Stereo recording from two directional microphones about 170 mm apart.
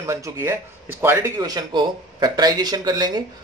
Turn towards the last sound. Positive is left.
turn(degrees=-25)  # may be behind; listen again after turning